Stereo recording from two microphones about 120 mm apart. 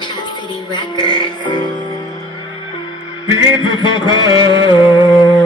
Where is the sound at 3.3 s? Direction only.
40° left (ahead or behind).